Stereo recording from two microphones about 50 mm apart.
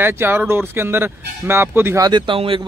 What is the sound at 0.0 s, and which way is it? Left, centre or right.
Speech, right.